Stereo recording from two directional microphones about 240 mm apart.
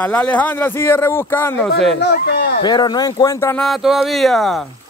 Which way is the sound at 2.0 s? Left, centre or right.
Left.